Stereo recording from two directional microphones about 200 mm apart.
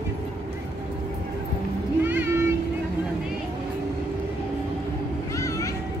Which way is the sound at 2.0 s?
10° right (ahead or behind).